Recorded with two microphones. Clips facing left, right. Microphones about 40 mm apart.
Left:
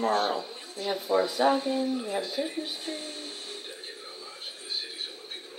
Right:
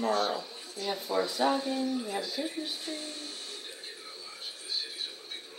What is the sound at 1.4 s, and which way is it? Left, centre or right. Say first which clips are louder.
Speech: left 4 dB; left.